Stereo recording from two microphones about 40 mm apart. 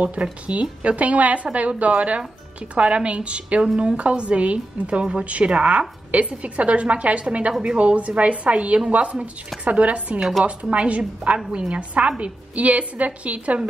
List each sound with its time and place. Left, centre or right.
0.0 s a woman's voice: right
11.3 s a woman's voice: right